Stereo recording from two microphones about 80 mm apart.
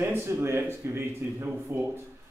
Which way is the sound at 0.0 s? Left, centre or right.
Right.